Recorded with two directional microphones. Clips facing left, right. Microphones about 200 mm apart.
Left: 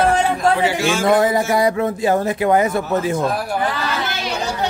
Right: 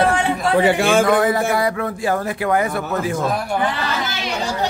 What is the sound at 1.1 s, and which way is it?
Speech, 25° left (ahead or behind).